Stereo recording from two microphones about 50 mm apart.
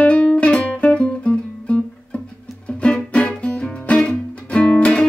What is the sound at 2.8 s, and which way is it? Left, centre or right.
Music, left.